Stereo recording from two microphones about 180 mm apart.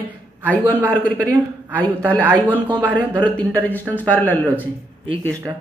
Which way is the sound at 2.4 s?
10° right (ahead or behind).